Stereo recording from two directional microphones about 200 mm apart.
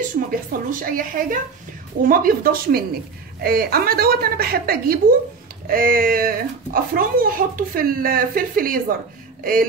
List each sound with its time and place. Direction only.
0.3 s speech: 45° right (ahead or behind)